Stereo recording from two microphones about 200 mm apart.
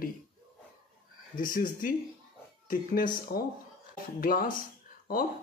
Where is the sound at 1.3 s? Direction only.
45° left (ahead or behind).